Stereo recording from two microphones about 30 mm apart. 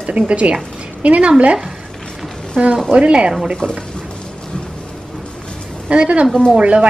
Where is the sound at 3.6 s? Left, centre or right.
Centre.